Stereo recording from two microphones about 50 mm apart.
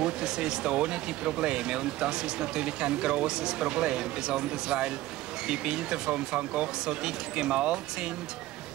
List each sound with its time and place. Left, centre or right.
0.0 s speech: centre